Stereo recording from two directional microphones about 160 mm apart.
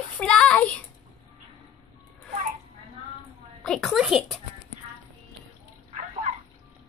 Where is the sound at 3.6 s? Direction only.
5° left (ahead or behind).